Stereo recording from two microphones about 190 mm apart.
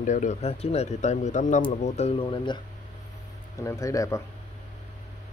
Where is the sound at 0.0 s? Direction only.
40° left (ahead or behind); by 2.6 s 25° left (ahead or behind).